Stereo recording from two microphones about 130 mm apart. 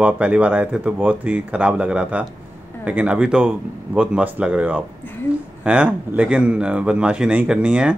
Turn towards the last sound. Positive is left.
turn(degrees=-10)  # may be behind; listen again after turning